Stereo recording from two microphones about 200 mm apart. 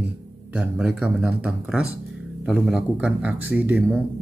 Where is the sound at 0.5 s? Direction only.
5° right (ahead or behind).